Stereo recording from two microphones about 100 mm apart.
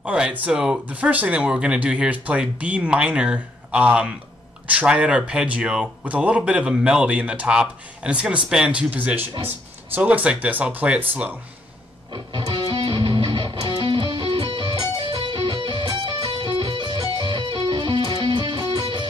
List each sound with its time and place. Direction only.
0.0 s speech: 10° right (ahead or behind)
12.1 s music: 55° right (ahead or behind)